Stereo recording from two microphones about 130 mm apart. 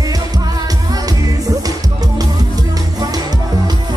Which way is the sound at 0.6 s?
30° right (ahead or behind).